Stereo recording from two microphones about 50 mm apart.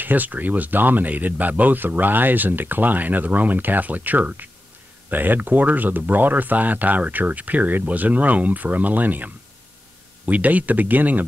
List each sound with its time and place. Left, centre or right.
0.0 s speech: right